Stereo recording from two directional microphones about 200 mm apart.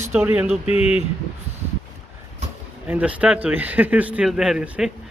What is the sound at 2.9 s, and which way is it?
Speech, 5° right (ahead or behind).